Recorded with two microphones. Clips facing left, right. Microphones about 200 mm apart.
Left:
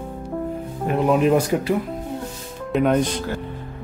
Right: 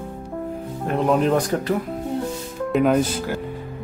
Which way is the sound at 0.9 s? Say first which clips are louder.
Left 1 dB; 5° left (ahead or behind).